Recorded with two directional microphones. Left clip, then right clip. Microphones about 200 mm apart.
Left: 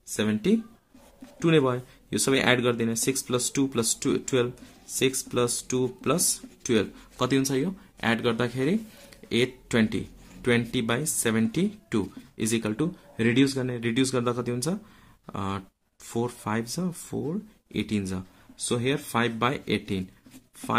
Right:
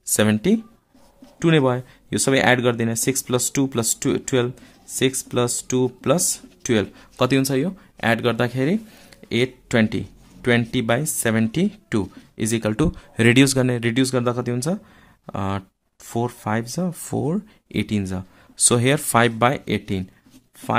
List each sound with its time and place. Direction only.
0.1 s speech: 45° right (ahead or behind); by 17.0 s 30° right (ahead or behind)
17.1 s speech: 45° right (ahead or behind)
18.7 s speech: 50° right (ahead or behind); by 20.1 s 30° right (ahead or behind)